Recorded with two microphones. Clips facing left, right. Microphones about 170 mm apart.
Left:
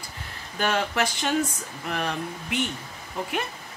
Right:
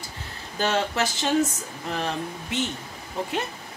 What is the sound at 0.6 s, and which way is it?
A woman's voice, 25° right (ahead or behind).